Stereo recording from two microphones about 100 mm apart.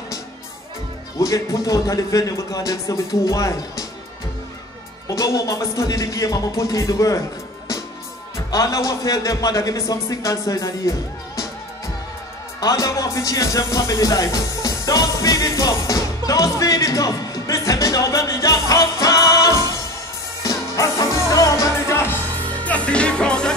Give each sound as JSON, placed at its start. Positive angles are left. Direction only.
{"t": 1.2, "sound": "a man's voice", "side_deg": 35}
{"t": 5.0, "sound": "a man's voice", "side_deg": 35}
{"t": 12.5, "sound": "music", "side_deg": 35}